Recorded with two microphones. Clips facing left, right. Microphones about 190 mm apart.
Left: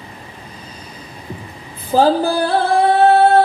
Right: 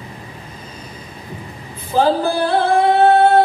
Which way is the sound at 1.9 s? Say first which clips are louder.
Left 2 dB; 35° left (ahead or behind).